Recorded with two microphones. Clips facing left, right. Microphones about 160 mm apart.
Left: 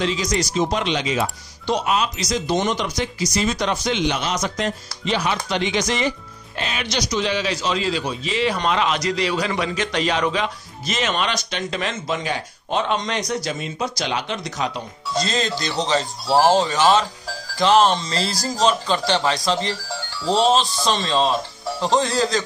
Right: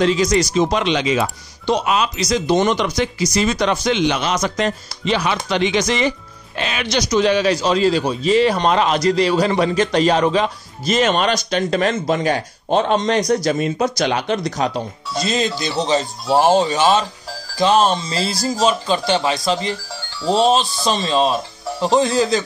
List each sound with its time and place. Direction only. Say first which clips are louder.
0.0 s speech: right 7 dB; 55° right (ahead or behind); by 7.0 s 85° right
7.0 s a man's voice: right 7 dB; 50° right (ahead or behind)
15.1 s speech: right 3 dB; 15° right (ahead or behind)